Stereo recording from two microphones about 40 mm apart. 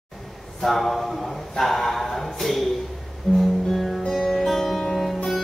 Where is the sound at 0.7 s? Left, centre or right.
Centre.